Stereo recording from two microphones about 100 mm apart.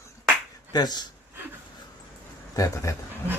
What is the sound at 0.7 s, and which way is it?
Speech, 45° left (ahead or behind).